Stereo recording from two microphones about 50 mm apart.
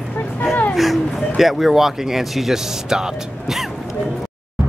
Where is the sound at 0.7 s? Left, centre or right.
Centre.